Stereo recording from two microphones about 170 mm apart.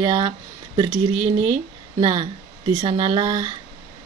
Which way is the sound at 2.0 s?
25° right (ahead or behind).